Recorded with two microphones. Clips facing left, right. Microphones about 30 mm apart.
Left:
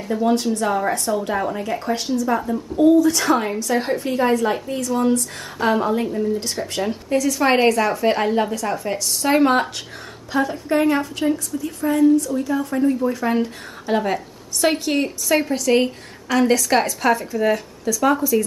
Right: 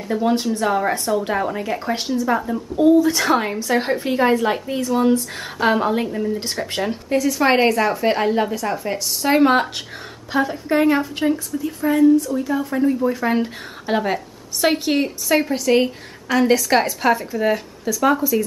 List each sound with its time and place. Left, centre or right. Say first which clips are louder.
0.1 s speech: even; centre
2.8 s a woman's voice: even; right